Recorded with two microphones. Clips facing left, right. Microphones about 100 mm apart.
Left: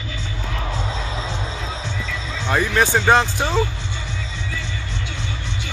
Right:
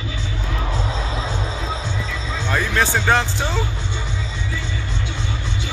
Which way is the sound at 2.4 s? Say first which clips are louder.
Left 2 dB; 15° left (ahead or behind).